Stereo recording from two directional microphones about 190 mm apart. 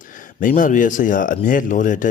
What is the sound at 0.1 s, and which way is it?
Speech, 45° left (ahead or behind).